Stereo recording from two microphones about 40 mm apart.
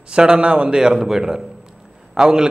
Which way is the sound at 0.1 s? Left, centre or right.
Right.